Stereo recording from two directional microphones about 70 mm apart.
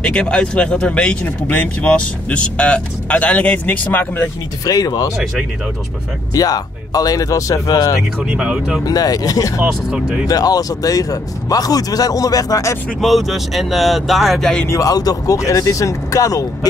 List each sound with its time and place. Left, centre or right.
0.0 s speech: centre
4.6 s a man's voice: left
6.3 s a man's voice: left
8.2 s speech: centre
8.8 s a man's voice: left
9.9 s speech: centre
10.2 s a man's voice: left
13.0 s speech: centre
14.7 s speech: left